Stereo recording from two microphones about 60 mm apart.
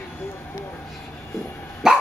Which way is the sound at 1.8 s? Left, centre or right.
Centre.